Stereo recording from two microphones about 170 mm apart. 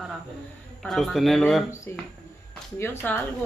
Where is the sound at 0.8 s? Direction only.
Centre (ahead or behind).